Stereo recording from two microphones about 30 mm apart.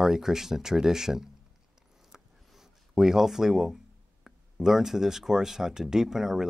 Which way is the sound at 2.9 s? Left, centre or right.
Centre.